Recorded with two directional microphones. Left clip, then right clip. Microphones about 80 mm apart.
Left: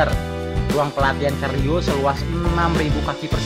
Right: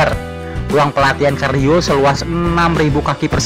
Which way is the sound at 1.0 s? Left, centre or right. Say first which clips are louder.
Right 7 dB; right.